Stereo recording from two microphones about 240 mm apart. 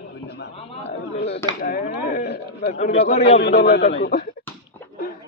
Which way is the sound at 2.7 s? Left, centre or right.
Left.